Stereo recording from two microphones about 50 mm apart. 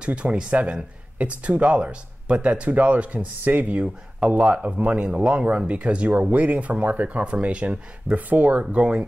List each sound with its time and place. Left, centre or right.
0.0 s speech: right